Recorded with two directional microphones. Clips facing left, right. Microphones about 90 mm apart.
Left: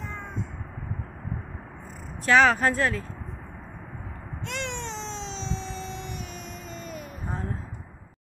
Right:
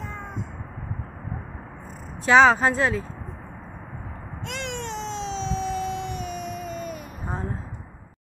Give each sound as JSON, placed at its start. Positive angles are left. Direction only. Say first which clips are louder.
{"t": 2.2, "sound": "speech", "louder": "right 3 dB", "side_deg": -20}
{"t": 4.6, "sound": "cat", "louder": "right 2 dB", "side_deg": -10}